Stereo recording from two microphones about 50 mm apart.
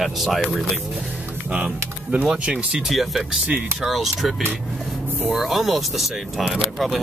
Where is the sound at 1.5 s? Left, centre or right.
Right.